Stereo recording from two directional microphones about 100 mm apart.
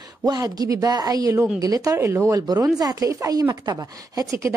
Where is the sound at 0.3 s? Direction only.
40° right (ahead or behind).